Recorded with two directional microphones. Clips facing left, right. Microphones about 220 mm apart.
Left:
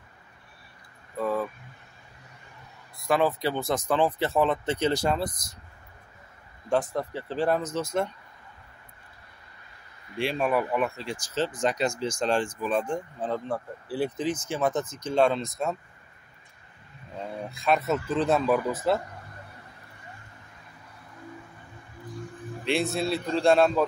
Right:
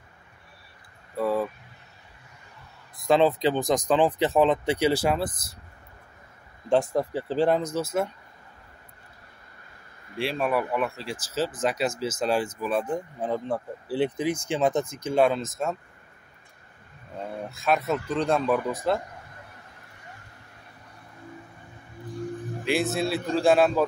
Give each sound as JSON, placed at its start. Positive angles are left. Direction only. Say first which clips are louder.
{"t": 1.1, "sound": "a sound", "louder": "right 2 dB", "side_deg": -10}
{"t": 3.0, "sound": "speech", "louder": "right 4 dB", "side_deg": -20}
{"t": 7.0, "sound": "speech", "louder": "right 5 dB", "side_deg": -30}
{"t": 7.4, "sound": "speech", "louder": "even", "side_deg": -15}
{"t": 10.1, "sound": "speech", "louder": "even", "side_deg": 0}
{"t": 17.2, "sound": "speech", "louder": "right 1 dB", "side_deg": 0}
{"t": 22.7, "sound": "speech", "louder": "right 1 dB", "side_deg": 0}